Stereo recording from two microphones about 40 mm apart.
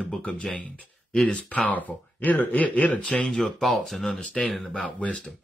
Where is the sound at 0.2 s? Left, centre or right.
Left.